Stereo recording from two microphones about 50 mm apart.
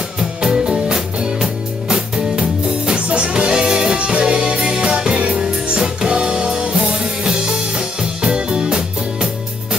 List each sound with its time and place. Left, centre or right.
0.4 s music: centre
3.3 s music: centre